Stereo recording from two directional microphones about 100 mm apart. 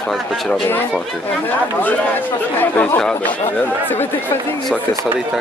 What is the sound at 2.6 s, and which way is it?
Speech, 20° left (ahead or behind).